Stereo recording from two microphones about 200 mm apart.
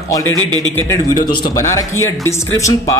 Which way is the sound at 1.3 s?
15° left (ahead or behind).